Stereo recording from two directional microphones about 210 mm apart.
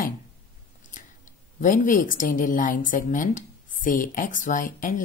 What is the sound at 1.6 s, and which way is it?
A woman's voice, 40° left (ahead or behind).